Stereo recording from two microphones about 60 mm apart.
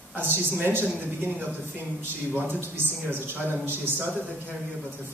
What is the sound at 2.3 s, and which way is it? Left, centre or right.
A man's voice, right.